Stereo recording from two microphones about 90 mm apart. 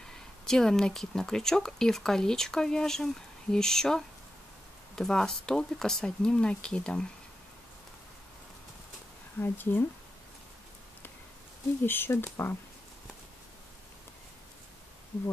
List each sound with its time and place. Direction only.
0.0 s speech: 5° left (ahead or behind)
9.4 s speech: 20° left (ahead or behind)
11.8 s speech: 25° left (ahead or behind)